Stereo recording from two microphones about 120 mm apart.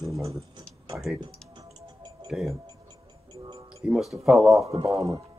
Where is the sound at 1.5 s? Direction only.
35° right (ahead or behind).